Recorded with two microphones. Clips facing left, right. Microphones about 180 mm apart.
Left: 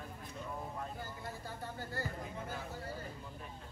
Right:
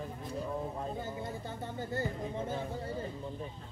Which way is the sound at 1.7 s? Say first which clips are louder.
Right 8 dB; 25° right (ahead or behind).